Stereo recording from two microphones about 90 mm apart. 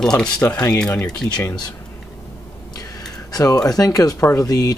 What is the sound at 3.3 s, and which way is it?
Speech, 45° left (ahead or behind).